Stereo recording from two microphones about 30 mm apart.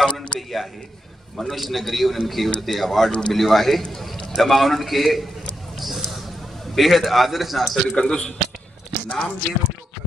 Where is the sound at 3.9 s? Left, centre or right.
Centre.